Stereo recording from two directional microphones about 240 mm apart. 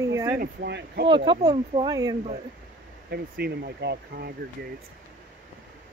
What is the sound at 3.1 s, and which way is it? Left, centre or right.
Speech, right.